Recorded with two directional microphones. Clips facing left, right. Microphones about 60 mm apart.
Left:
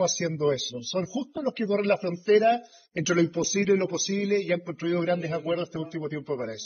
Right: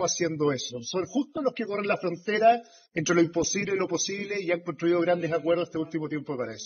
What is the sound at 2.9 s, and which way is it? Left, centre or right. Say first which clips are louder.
A man's voice: right 1 dB; right.